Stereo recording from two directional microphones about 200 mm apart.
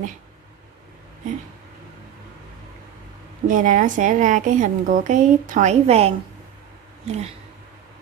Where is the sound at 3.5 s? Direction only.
40° right (ahead or behind).